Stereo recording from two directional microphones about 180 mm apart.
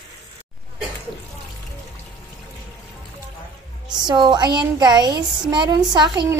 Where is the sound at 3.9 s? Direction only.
25° right (ahead or behind).